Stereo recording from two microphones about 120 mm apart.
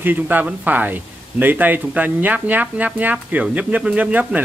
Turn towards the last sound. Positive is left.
turn(degrees=-10)  # may be behind; listen again after turning